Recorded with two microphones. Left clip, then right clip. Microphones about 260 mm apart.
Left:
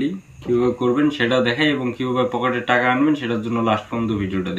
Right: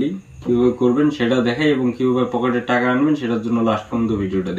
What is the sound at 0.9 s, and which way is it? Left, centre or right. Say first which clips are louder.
Speech: even; centre.